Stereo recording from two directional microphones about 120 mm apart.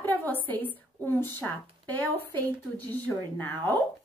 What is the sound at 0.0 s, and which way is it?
A woman's voice, 15° left (ahead or behind).